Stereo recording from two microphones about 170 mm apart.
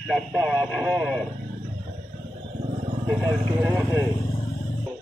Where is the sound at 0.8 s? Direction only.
20° right (ahead or behind).